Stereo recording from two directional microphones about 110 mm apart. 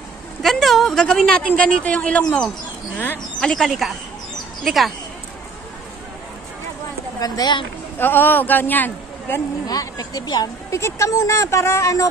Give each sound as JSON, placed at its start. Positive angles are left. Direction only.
{"t": 0.4, "sound": "a man's voice", "side_deg": 0}
{"t": 3.3, "sound": "speech", "side_deg": 5}
{"t": 7.2, "sound": "a woman's voice", "side_deg": 35}
{"t": 8.0, "sound": "a man's voice", "side_deg": 20}
{"t": 9.7, "sound": "speech", "side_deg": 35}